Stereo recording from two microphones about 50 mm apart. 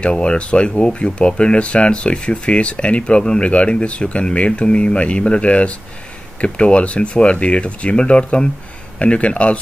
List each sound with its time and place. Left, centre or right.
0.0 s speech: left